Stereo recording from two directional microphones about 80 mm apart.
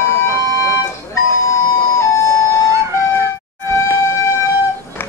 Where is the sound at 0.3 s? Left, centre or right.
Left.